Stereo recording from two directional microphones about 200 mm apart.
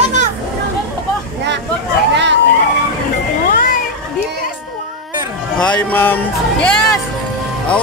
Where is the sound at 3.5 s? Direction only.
45° left (ahead or behind).